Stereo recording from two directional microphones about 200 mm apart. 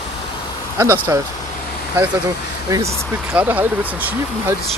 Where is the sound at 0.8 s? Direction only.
15° right (ahead or behind).